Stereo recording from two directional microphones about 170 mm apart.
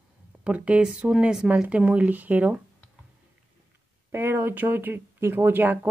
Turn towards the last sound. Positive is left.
turn(degrees=-10)  # may be behind; listen again after turning